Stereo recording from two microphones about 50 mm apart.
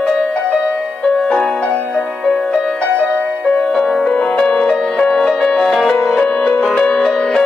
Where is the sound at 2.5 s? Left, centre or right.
Centre.